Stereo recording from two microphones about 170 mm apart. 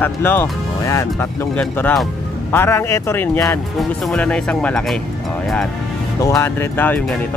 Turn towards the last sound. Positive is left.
turn(degrees=5)  # may be behind; listen again after turning